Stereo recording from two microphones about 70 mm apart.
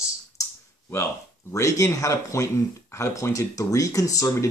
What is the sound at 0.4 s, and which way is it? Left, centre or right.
Clicking, left.